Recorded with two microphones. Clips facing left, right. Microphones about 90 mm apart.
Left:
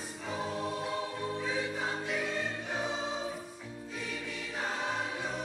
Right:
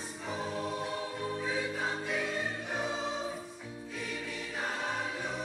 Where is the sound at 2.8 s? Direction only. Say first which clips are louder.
Right 1 dB; 20° left (ahead or behind).